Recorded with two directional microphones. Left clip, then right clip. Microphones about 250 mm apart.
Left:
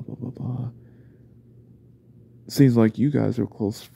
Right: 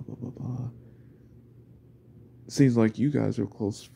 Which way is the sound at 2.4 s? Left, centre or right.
Centre.